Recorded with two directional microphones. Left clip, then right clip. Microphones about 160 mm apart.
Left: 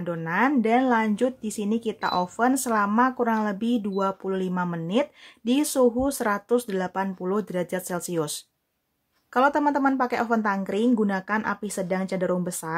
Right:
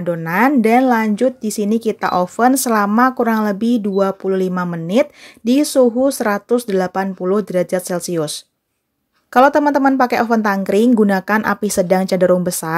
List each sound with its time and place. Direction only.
0.0 s speech: 25° right (ahead or behind)
9.3 s a woman's voice: 30° right (ahead or behind)